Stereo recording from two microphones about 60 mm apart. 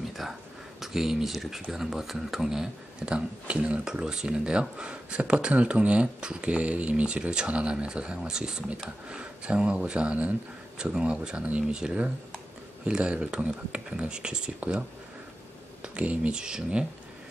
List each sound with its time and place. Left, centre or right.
0.2 s speech: centre